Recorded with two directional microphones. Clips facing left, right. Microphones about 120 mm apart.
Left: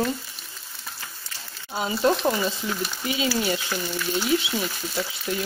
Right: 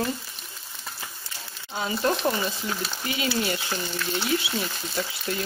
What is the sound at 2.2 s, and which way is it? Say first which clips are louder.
Speech: left 2 dB; centre (ahead or behind).